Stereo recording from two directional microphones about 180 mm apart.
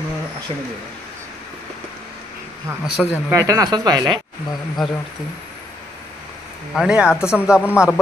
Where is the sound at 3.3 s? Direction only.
20° right (ahead or behind).